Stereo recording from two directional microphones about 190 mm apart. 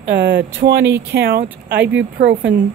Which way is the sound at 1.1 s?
55° right (ahead or behind).